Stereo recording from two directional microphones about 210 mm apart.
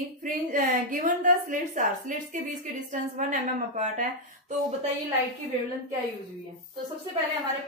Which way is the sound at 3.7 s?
35° right (ahead or behind).